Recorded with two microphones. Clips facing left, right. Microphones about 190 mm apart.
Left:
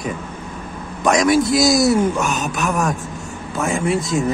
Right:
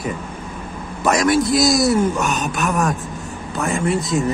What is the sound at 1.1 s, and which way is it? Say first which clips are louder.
A man's voice: left 1 dB; centre (ahead or behind).